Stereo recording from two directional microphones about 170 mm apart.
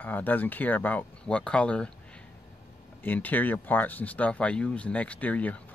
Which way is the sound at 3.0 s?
10° left (ahead or behind).